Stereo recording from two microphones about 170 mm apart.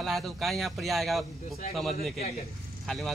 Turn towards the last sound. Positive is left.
turn(degrees=0)  # may be behind; listen again after turning